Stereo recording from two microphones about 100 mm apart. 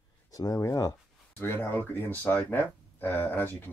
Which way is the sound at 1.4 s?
25° left (ahead or behind).